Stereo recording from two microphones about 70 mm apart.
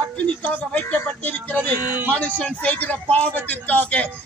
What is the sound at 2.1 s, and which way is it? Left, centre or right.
A man's voice, centre.